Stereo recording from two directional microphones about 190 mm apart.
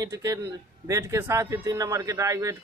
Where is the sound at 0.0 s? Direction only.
15° right (ahead or behind).